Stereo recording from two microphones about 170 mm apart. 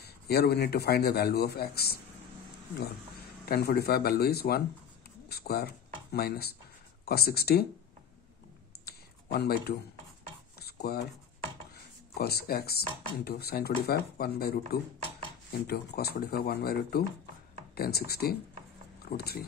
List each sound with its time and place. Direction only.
0.0 s speech: 70° left (ahead or behind)
3.4 s speech: 65° left (ahead or behind)
8.8 s a sound: 65° left (ahead or behind)
11.7 s speech: 65° left (ahead or behind)
15.6 s speech: 70° left (ahead or behind)